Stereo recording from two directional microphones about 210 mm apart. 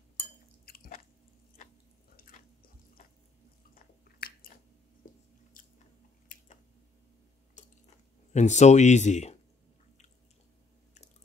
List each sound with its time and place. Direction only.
0.7 s chewing: 45° left (ahead or behind)
2.1 s a sound: 45° left (ahead or behind)
3.7 s biting: 45° left (ahead or behind)
6.3 s chewing: 40° left (ahead or behind)
7.6 s chewing: 35° left (ahead or behind)
8.3 s speech: 35° left (ahead or behind)